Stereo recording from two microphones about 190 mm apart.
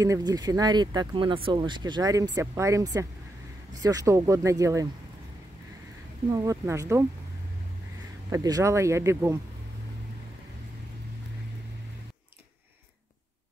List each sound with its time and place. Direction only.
0.0 s speech: 20° right (ahead or behind)
6.3 s speech: 15° right (ahead or behind)
8.3 s speech: 20° right (ahead or behind)